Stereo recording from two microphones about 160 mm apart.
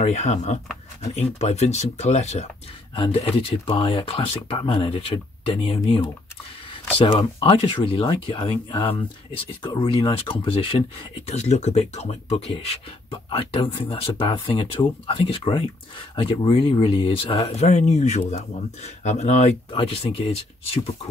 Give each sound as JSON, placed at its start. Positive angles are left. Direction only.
{"t": 0.0, "sound": "speech", "side_deg": 45}
{"t": 7.1, "sound": "speech", "side_deg": 35}